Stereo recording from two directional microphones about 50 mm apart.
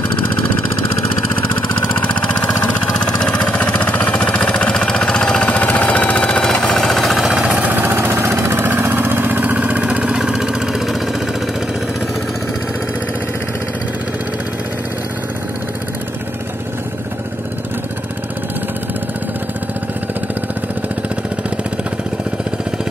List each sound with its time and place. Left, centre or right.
4.1 s vehicle: left
6.7 s jackhammer: centre
7.2 s vehicle: centre
7.8 s vehicle: right
10.1 s vehicle: centre